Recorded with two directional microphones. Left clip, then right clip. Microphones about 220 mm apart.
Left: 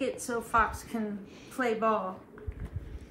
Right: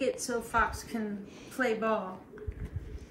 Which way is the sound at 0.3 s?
10° left (ahead or behind).